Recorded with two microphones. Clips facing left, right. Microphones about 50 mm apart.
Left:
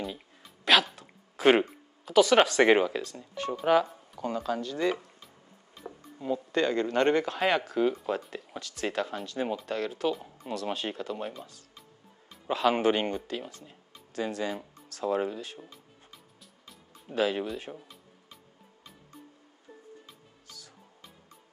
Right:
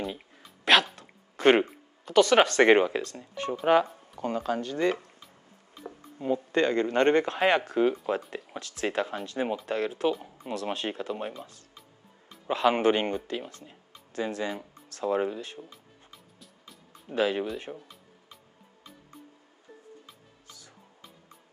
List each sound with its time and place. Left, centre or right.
0.0 s a sound: centre
1.6 s speech: centre
5.8 s music: centre
6.1 s speech: right
6.5 s speech: centre
17.7 s music: centre
20.1 s music: centre